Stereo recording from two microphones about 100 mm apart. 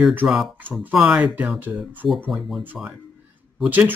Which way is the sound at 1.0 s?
15° right (ahead or behind).